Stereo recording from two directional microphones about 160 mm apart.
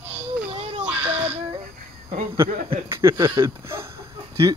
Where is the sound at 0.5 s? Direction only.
40° right (ahead or behind).